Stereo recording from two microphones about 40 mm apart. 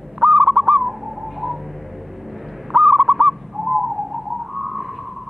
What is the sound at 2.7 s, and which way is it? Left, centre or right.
Owl, centre.